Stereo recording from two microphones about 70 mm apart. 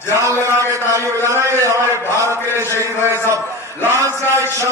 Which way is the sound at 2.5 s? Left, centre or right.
Left.